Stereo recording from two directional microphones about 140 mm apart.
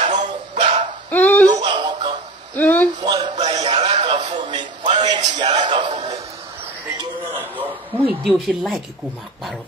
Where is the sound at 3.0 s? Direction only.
30° right (ahead or behind).